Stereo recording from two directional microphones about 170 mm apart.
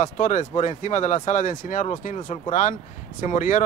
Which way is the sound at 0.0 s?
45° left (ahead or behind).